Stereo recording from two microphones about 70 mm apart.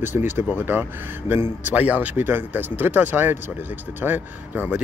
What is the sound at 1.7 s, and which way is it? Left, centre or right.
Speech, right.